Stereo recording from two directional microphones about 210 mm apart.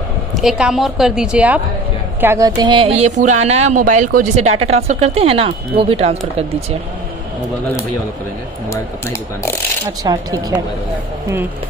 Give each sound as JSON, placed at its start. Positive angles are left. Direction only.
{"t": 0.4, "sound": "a woman's voice", "side_deg": 0}
{"t": 10.0, "sound": "speech", "side_deg": -15}